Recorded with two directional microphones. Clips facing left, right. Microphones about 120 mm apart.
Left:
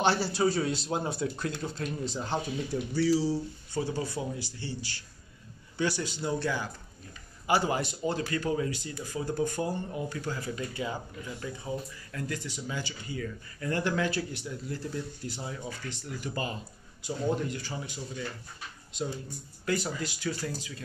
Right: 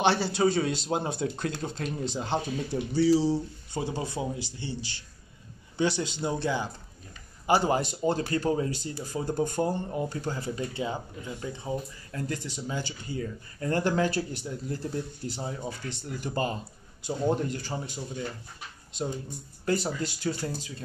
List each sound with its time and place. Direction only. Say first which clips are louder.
0.0 s a man's voice: right 2 dB; 20° right (ahead or behind)
19.6 s speech: right 3 dB; 30° right (ahead or behind)